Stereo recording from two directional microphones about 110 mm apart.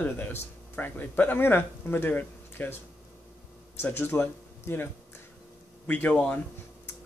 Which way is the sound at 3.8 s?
20° left (ahead or behind).